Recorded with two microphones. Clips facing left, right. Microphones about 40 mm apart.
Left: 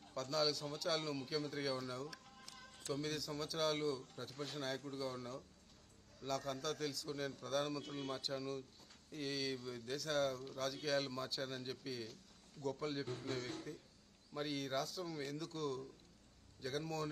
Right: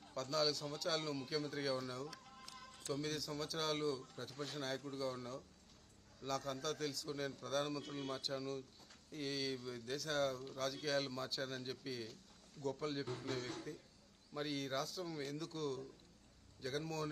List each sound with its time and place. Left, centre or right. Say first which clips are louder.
0.1 s speech: even; centre
13.0 s a man's voice: even; right
14.3 s speech: left 1 dB; centre